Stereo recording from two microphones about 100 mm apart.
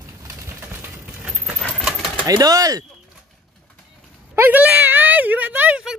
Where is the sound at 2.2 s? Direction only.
40° right (ahead or behind).